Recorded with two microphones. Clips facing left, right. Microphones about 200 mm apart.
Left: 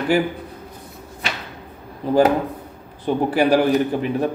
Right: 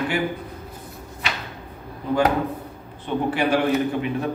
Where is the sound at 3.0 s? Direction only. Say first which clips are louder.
Left 4 dB; 35° left (ahead or behind).